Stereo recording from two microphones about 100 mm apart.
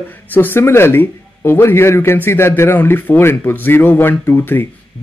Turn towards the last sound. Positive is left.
turn(degrees=20)  # may be behind; listen again after turning